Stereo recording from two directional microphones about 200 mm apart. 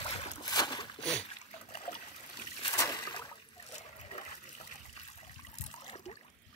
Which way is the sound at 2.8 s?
20° left (ahead or behind).